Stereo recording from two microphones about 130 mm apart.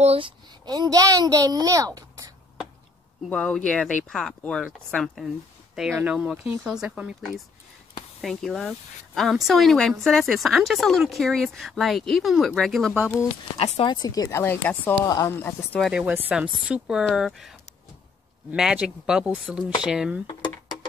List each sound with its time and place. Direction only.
0.0 s speech: 50° right (ahead or behind)
0.7 s a child's voice: 30° right (ahead or behind)
3.3 s speech: 5° left (ahead or behind)
6.3 s speech: 15° right (ahead or behind)
6.6 s speech: 5° right (ahead or behind)
13.6 s speech: 50° left (ahead or behind)
13.9 s speech: 30° left (ahead or behind)
14.4 s speech: 15° left (ahead or behind)
15.0 s speech: 30° left (ahead or behind)
15.3 s speech: 15° left (ahead or behind)
15.8 s speech: 5° right (ahead or behind)